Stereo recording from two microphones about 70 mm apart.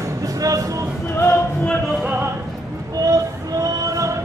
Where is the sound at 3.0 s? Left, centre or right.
Right.